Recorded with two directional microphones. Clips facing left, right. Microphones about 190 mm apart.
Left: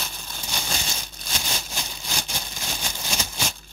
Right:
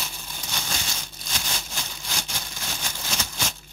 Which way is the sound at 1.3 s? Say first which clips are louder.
Left 2 dB; 15° left (ahead or behind).